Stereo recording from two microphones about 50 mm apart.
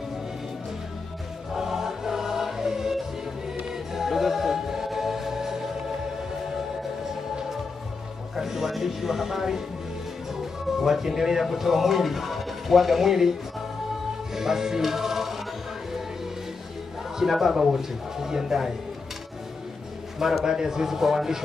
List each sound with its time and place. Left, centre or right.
1.5 s music: centre
8.4 s music: centre
10.3 s speech: centre
14.3 s music: centre
17.2 s speech: centre
20.2 s speech: centre